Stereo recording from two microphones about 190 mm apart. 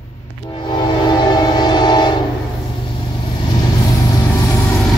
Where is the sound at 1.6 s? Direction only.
20° left (ahead or behind).